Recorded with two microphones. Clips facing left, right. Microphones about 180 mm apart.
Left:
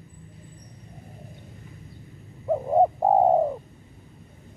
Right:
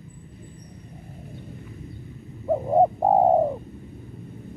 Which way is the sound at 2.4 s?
5° right (ahead or behind).